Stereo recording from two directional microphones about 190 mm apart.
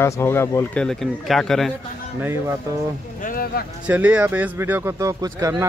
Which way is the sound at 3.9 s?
5° right (ahead or behind).